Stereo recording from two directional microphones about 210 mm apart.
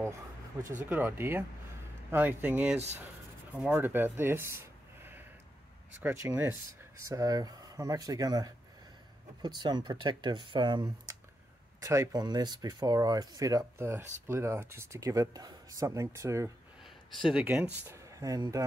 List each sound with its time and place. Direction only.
0.8 s speech: 10° right (ahead or behind)
6.0 s speech: 10° right (ahead or behind)
9.6 s speech: 20° right (ahead or behind)
16.8 s speech: centre (ahead or behind); by 18.6 s 15° right (ahead or behind)